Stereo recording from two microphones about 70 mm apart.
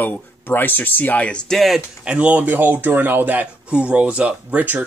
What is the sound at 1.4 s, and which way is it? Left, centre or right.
Speech, centre.